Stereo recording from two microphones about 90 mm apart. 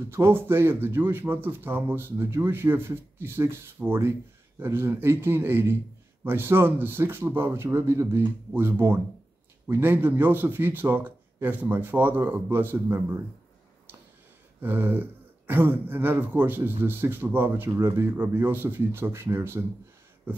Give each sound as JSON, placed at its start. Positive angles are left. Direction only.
{"t": 0.1, "sound": "speech", "side_deg": -25}
{"t": 14.6, "sound": "speech", "side_deg": -20}